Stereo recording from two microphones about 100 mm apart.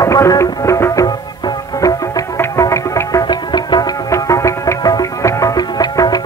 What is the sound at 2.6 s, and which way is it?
Music, 30° left (ahead or behind).